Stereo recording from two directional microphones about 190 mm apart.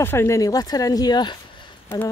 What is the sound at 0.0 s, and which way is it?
Speech, 10° left (ahead or behind).